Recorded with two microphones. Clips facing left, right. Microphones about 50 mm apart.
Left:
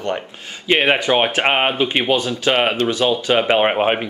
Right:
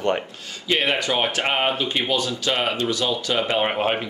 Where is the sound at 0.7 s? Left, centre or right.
Left.